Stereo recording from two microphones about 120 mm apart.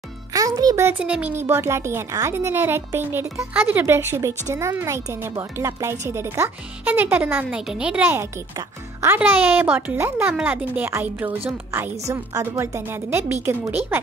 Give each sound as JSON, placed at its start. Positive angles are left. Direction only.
{"t": 0.3, "sound": "music for children", "side_deg": -30}
{"t": 0.8, "sound": "a child's voice", "side_deg": -10}